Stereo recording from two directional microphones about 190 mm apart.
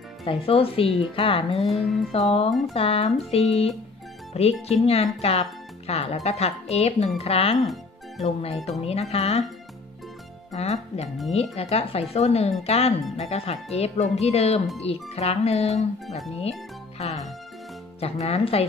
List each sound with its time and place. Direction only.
0.2 s speech: 30° left (ahead or behind)
10.5 s speech: 35° left (ahead or behind)